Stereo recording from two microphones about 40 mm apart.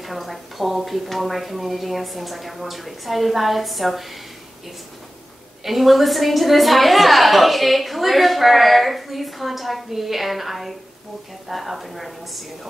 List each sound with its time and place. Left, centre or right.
0.0 s a woman's voice: centre
5.6 s a woman's voice: centre